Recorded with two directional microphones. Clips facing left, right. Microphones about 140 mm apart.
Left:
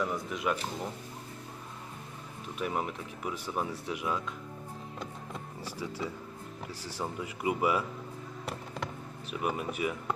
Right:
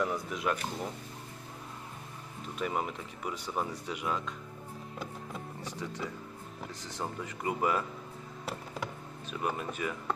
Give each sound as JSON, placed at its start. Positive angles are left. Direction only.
{"t": 0.0, "sound": "speech", "side_deg": 0}
{"t": 2.6, "sound": "speech", "side_deg": 0}
{"t": 9.3, "sound": "speech", "side_deg": 10}